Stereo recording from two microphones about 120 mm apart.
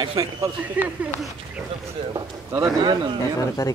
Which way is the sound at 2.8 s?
40° right (ahead or behind).